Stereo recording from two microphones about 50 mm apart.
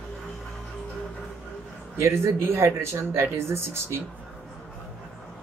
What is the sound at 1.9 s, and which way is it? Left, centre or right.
Speech, right.